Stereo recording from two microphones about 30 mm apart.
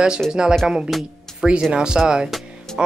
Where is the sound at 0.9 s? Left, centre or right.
Centre.